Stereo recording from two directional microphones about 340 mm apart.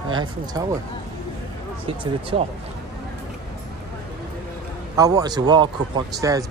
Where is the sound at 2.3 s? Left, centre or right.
Centre.